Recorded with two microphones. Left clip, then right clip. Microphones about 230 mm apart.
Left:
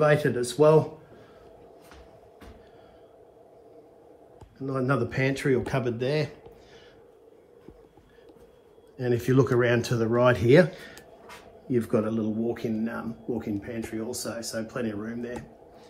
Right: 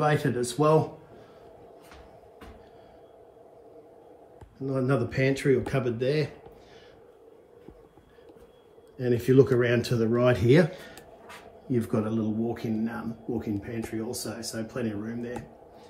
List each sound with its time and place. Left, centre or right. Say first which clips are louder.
0.0 s speech: left 3 dB; centre
4.6 s speech: even; centre
8.9 s speech: right 3 dB; centre